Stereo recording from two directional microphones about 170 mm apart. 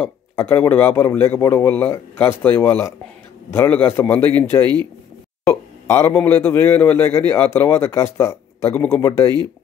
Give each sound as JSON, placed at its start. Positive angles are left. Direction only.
{"t": 0.0, "sound": "a man's voice", "side_deg": 15}